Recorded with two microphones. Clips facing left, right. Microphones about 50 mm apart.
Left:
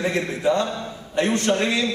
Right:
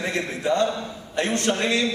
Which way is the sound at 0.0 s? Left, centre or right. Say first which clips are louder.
Left 4 dB; centre.